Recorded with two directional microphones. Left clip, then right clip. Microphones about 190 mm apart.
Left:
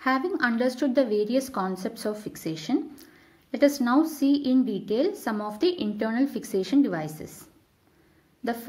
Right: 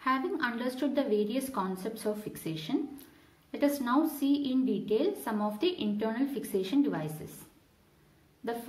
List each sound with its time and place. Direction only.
0.0 s a woman's voice: 30° left (ahead or behind)